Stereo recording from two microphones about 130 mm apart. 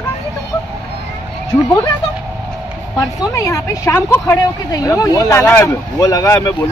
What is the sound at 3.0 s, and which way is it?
Speech, 25° left (ahead or behind).